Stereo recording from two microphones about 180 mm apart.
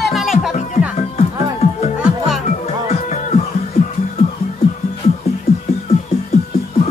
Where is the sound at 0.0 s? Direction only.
Centre (ahead or behind).